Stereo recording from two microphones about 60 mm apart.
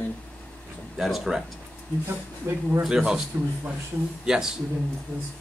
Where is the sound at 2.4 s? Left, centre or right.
Right.